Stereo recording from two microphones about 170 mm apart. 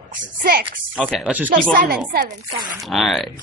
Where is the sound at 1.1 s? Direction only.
5° right (ahead or behind).